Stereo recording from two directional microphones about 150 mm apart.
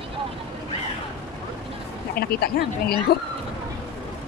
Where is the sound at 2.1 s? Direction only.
90° left.